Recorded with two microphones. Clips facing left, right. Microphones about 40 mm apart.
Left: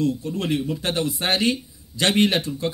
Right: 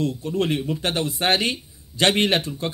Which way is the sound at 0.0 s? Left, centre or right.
Right.